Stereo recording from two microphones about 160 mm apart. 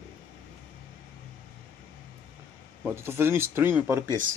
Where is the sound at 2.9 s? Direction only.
15° right (ahead or behind).